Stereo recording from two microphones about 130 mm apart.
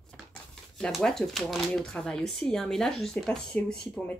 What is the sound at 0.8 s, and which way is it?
Speech, 5° left (ahead or behind).